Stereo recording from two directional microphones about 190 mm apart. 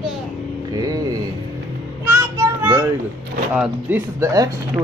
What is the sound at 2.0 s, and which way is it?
Child singing, 15° right (ahead or behind).